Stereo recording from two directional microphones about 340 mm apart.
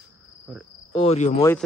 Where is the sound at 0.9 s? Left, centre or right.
Centre.